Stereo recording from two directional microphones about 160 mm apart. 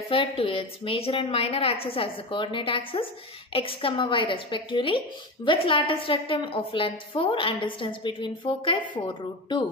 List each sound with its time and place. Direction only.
0.1 s a woman's voice: 35° left (ahead or behind)